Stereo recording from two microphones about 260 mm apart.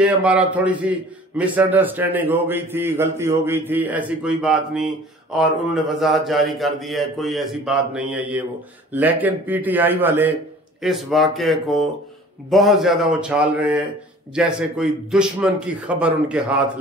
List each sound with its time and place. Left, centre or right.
0.0 s a man's voice: centre